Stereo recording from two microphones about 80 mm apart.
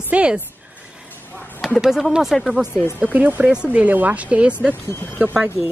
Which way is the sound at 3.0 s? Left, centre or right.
Right.